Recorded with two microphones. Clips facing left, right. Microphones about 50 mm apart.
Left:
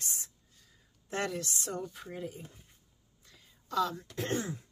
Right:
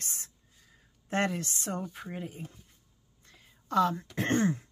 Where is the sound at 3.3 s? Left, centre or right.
Right.